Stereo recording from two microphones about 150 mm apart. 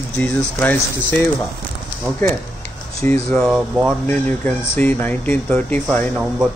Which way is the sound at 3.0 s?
5° left (ahead or behind).